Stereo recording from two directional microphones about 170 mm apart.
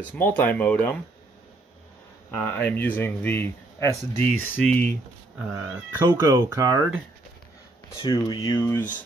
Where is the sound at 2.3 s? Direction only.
10° left (ahead or behind).